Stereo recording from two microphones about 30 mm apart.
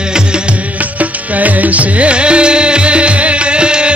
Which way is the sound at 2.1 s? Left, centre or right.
Right.